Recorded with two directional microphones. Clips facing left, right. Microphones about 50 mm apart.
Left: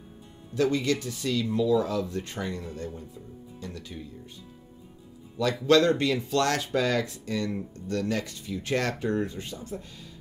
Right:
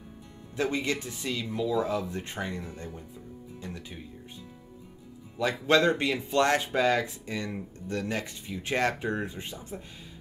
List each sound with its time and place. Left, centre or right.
0.6 s speech: right
5.4 s speech: centre